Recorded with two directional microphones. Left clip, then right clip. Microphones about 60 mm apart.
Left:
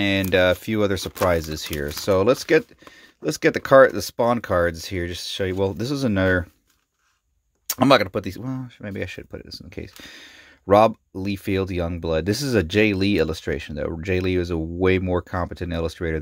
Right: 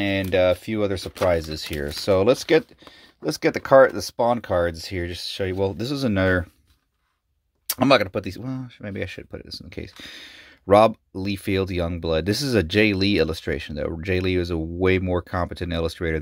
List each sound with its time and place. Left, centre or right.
0.0 s speech: left
1.7 s speech: left
3.2 s speech: left
7.8 s speech: left; by 15.4 s centre
15.4 s speech: centre